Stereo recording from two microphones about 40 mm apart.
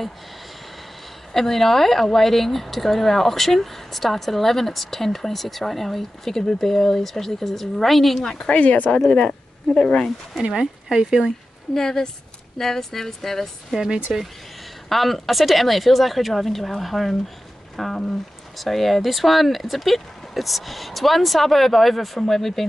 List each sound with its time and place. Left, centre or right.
1.3 s speech: centre
8.3 s speech: centre
8.5 s speech: left
10.4 s speech: centre
11.7 s speech: centre
14.1 s speech: centre
14.9 s speech: centre